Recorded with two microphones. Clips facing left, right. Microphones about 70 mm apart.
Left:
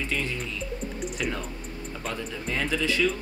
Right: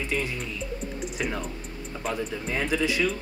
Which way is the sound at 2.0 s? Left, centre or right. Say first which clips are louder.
Right 3 dB; centre.